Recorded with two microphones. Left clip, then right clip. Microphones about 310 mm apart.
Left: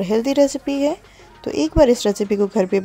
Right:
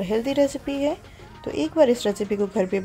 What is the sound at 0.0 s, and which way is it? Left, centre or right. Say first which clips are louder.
Speech: left 5 dB; left.